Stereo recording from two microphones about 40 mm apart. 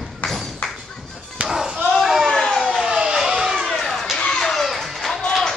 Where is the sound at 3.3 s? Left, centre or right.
Centre.